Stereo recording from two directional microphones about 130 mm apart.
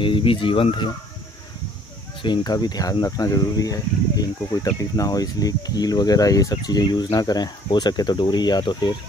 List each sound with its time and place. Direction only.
0.0 s speech: 40° left (ahead or behind)
2.2 s speech: 35° left (ahead or behind)